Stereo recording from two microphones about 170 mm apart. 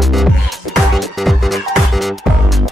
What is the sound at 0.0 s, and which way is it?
Music, centre (ahead or behind).